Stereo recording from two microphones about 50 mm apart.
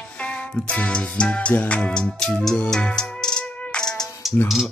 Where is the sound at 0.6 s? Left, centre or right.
Left.